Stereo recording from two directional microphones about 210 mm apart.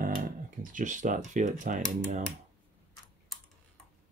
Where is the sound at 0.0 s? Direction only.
40° right (ahead or behind).